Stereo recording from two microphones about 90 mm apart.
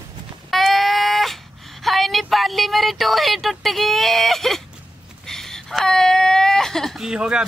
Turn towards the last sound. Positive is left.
turn(degrees=-10)  # may be behind; listen again after turning